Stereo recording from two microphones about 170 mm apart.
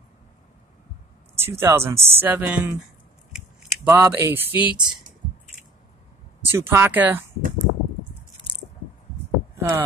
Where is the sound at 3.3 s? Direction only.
10° right (ahead or behind).